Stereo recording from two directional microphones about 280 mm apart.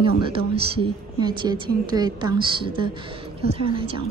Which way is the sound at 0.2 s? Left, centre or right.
Centre.